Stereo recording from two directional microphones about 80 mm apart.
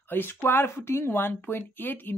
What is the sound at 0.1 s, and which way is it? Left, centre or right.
Speech, left.